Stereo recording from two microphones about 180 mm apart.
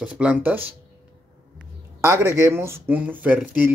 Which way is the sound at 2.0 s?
15° right (ahead or behind).